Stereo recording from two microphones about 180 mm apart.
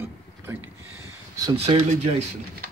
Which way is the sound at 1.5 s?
35° right (ahead or behind).